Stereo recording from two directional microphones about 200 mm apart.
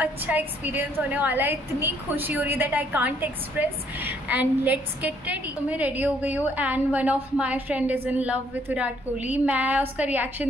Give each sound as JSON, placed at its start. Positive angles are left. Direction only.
{"t": 0.0, "sound": "a woman's voice", "side_deg": -10}